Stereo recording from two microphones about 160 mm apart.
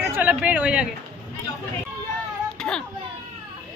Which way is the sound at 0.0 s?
10° right (ahead or behind).